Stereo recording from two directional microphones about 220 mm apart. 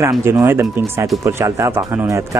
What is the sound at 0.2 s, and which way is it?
Speech, 10° right (ahead or behind).